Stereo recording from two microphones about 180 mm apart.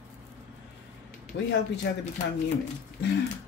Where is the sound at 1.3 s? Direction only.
90° left.